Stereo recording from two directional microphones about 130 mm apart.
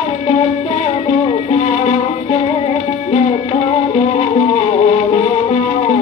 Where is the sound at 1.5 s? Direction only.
55° left (ahead or behind).